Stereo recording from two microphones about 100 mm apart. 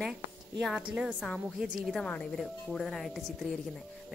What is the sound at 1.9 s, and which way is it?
Speech, 10° left (ahead or behind).